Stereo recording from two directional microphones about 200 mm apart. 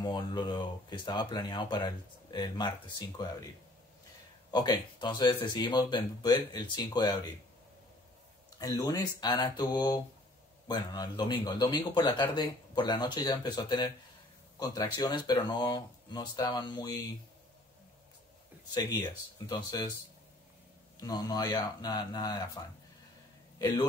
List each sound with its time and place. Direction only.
0.0 s speech: 20° left (ahead or behind)
4.5 s speech: 20° left (ahead or behind)
8.5 s speech: 15° left (ahead or behind)
18.7 s speech: 15° left (ahead or behind)
21.0 s speech: 20° left (ahead or behind)